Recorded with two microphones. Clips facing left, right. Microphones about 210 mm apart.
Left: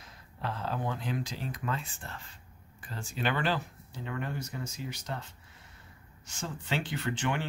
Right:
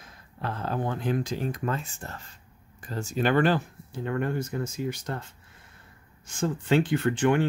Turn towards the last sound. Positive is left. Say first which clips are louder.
# right 10 dB
turn(degrees=-50)  # may be behind; listen again after turning